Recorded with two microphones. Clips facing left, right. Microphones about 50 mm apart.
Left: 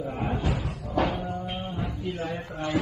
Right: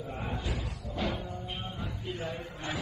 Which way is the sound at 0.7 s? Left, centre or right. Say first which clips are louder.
Left 8 dB; left.